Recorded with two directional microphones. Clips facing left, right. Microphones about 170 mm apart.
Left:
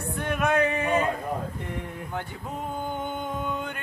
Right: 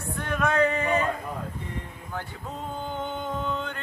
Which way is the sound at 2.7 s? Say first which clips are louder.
Even; 15° left (ahead or behind).